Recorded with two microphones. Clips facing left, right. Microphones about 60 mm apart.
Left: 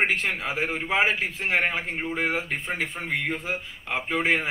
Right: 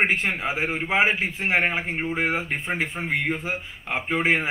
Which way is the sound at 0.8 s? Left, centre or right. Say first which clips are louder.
Right 2 dB; centre.